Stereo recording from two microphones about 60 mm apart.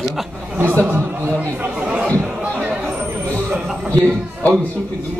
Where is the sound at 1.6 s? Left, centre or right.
Centre.